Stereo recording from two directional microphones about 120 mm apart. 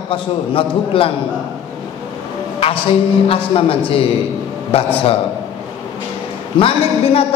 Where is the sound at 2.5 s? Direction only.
50° left (ahead or behind).